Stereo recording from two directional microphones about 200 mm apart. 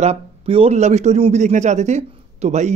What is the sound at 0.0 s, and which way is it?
A man's voice, 30° right (ahead or behind).